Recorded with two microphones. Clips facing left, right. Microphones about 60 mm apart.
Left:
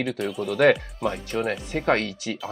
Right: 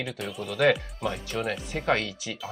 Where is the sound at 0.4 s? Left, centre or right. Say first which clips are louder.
Left 4 dB; left.